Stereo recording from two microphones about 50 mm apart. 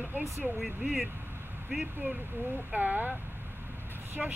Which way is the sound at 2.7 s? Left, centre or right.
Right.